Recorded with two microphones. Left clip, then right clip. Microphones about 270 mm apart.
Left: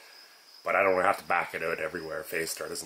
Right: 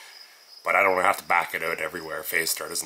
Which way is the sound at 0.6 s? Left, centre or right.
Centre.